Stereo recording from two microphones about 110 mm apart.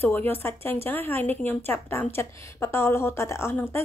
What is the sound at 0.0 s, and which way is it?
Speech, 20° left (ahead or behind).